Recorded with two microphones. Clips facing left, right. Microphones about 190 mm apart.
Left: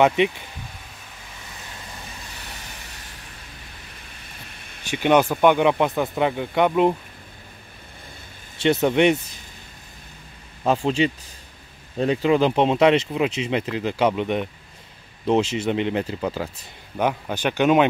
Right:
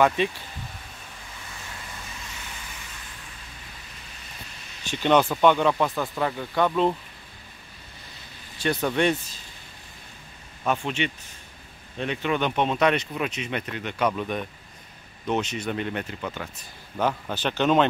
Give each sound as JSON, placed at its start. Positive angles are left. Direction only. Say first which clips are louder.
{"t": 0.0, "sound": "speech", "louder": "left 4 dB", "side_deg": 20}
{"t": 4.9, "sound": "speech", "louder": "left 3 dB", "side_deg": 15}
{"t": 8.5, "sound": "speech", "louder": "left 6 dB", "side_deg": 25}
{"t": 10.6, "sound": "speech", "louder": "left 6 dB", "side_deg": 30}
{"t": 17.0, "sound": "speech", "louder": "left 3 dB", "side_deg": 15}